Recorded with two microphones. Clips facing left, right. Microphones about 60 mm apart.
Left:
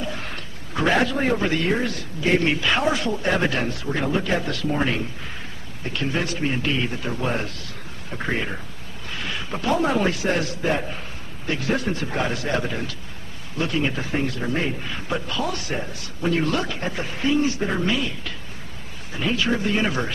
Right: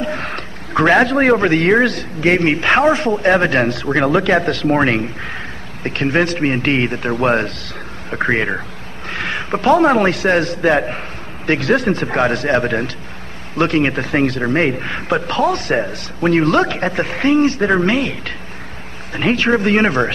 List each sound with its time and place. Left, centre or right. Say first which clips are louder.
0.0 s a man's voice: right 8 dB; right
2.4 s speech: right 8 dB; right
3.7 s a man's voice: right 9 dB; right